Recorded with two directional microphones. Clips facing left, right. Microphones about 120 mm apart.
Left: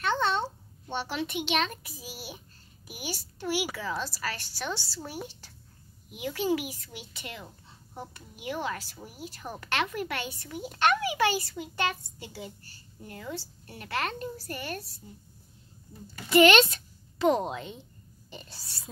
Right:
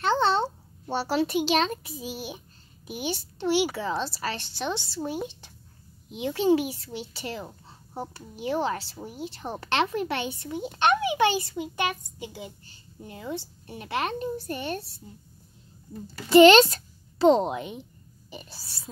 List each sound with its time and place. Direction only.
0.0 s a child's voice: 30° right (ahead or behind)
16.3 s speech: 30° right (ahead or behind); by 18.8 s 10° right (ahead or behind)